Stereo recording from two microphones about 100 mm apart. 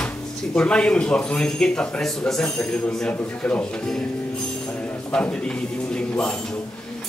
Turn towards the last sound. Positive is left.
turn(degrees=10)  # may be behind; listen again after turning